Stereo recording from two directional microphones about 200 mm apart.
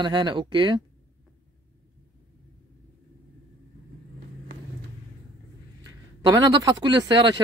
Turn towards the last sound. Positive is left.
turn(degrees=-20)  # may be behind; listen again after turning